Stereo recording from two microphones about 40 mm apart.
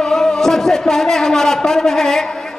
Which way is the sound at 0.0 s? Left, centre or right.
Centre.